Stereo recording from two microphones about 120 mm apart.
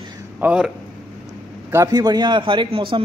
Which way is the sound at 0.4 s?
10° right (ahead or behind).